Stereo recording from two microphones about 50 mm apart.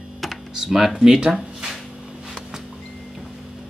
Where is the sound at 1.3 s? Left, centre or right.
Centre.